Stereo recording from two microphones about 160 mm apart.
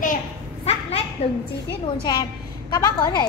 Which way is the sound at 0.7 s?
40° left (ahead or behind).